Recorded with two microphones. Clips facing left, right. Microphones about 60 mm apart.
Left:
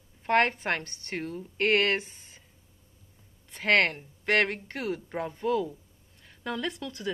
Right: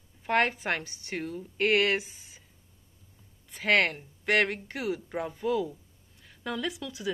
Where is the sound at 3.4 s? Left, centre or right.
Centre.